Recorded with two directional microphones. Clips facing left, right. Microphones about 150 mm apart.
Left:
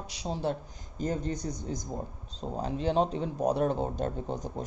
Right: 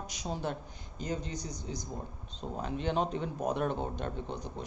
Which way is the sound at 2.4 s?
35° left (ahead or behind).